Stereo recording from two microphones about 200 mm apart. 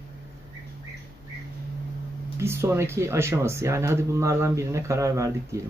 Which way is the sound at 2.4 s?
15° right (ahead or behind).